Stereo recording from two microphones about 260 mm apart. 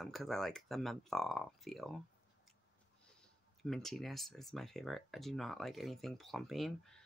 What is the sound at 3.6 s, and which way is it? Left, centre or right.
Speech, centre.